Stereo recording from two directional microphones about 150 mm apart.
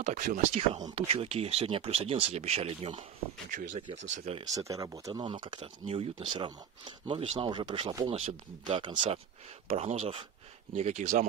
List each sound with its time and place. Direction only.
0.0 s speech: 60° right (ahead or behind); by 3.1 s 40° right (ahead or behind)
3.4 s speech: 60° right (ahead or behind)
3.9 s speech: 45° right (ahead or behind)
4.6 s speech: 25° right (ahead or behind)
8.1 s speech: 40° right (ahead or behind)